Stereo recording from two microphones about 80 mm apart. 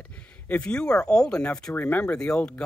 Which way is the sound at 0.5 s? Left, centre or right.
Centre.